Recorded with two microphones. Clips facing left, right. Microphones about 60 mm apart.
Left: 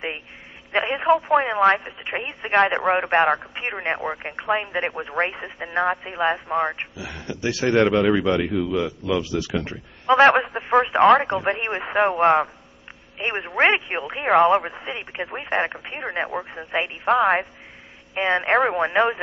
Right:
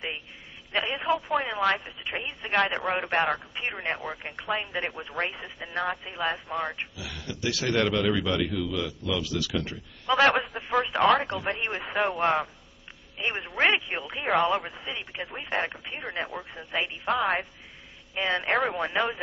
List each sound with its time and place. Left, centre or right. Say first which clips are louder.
0.7 s speech: left 8 dB; left